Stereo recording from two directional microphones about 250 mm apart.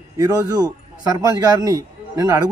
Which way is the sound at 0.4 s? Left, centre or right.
Centre.